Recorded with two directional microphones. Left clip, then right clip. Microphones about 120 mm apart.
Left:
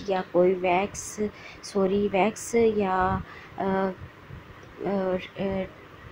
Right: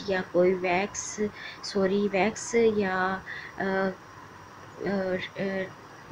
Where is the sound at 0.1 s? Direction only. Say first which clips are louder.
Left 2 dB; 20° left (ahead or behind).